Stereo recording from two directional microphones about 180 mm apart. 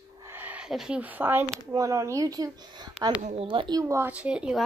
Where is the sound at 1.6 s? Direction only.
15° right (ahead or behind).